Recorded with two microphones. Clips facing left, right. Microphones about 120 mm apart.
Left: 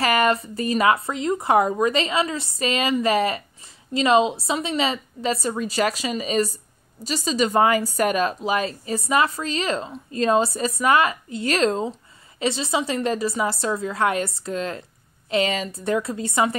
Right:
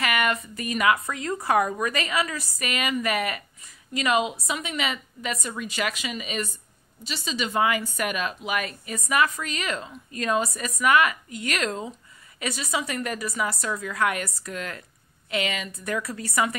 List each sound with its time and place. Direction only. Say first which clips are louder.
0.0 s a woman's voice: left 6 dB; 35° left (ahead or behind)